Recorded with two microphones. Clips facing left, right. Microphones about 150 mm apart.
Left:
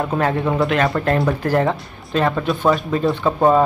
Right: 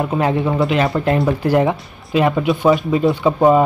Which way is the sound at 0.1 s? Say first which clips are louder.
Right 2 dB; 10° right (ahead or behind).